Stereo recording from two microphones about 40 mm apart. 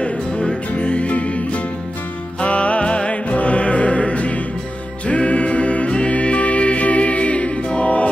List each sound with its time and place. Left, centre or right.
0.7 s music: left